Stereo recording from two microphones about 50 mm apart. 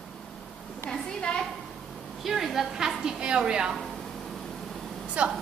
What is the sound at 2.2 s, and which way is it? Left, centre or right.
Speech, centre.